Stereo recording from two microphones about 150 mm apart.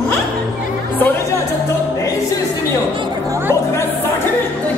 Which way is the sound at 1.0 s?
10° left (ahead or behind).